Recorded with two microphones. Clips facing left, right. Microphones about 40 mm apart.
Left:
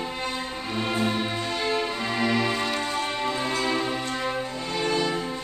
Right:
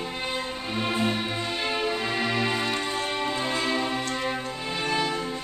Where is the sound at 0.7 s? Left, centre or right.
Centre.